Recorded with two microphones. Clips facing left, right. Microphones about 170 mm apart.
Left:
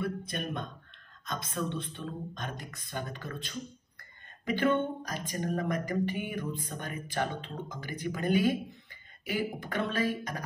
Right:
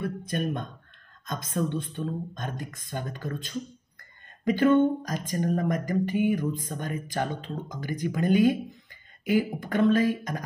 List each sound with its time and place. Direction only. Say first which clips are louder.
0.0 s speech: right 5 dB; 45° right (ahead or behind)